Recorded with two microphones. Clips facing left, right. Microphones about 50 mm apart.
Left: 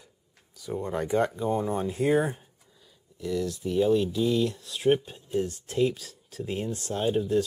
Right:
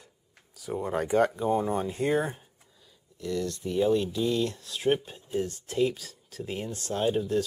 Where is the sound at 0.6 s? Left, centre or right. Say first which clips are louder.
Even; centre.